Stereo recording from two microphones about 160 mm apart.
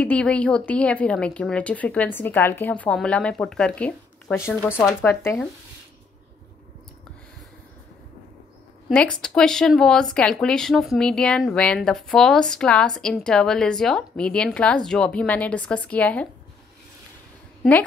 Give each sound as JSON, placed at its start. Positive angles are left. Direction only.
{"t": 0.0, "sound": "a woman's voice", "side_deg": 10}
{"t": 8.8, "sound": "a woman's voice", "side_deg": 5}